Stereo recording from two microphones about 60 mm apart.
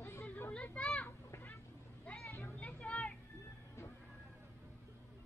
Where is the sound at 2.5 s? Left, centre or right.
Left.